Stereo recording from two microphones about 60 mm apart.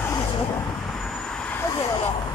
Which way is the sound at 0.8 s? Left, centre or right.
Centre.